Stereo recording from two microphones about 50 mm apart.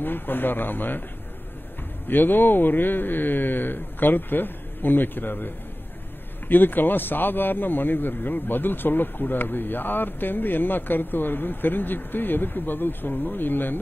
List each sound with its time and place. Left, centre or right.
0.0 s speech: left
2.0 s speech: left
6.5 s speech: left